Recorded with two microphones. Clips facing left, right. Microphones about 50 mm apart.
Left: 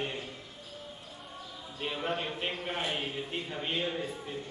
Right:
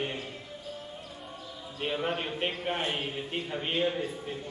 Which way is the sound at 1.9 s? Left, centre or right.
Centre.